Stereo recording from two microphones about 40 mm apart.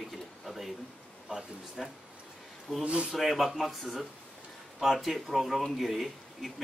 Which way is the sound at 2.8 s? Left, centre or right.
Right.